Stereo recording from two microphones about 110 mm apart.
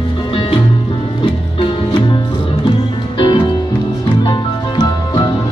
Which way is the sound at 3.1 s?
45° left (ahead or behind).